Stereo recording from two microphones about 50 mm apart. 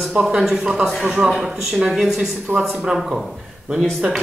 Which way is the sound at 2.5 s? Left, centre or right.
Right.